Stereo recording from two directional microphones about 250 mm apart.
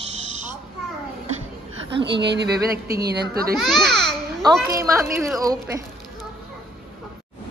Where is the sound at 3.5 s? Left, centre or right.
Centre.